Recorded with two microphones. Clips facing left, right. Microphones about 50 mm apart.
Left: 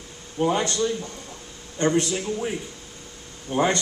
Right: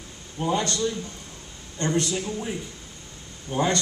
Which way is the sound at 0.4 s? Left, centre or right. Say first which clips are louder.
Left 3 dB; left.